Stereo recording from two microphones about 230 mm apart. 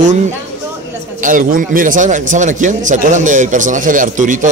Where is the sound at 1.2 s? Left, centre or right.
Right.